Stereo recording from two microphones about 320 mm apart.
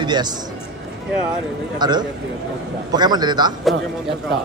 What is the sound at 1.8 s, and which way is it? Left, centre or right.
Speech, centre.